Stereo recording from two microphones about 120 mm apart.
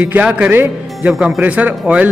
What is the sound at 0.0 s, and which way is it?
A man's voice, 10° right (ahead or behind).